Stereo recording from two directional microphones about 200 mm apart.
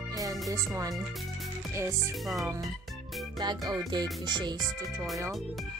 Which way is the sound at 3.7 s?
20° right (ahead or behind).